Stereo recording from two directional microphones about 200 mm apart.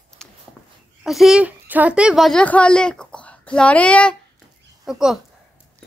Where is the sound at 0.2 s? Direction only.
5° left (ahead or behind).